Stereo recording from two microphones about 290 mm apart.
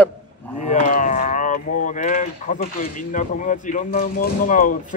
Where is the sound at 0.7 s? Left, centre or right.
Left.